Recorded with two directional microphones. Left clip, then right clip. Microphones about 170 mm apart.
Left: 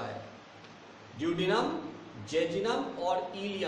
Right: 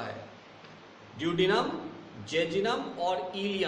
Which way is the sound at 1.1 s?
15° right (ahead or behind).